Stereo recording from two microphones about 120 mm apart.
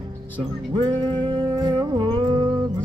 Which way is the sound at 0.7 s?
40° right (ahead or behind).